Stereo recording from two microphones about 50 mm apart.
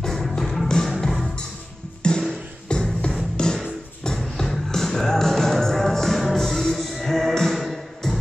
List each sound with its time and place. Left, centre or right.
0.0 s music: centre
2.0 s music: centre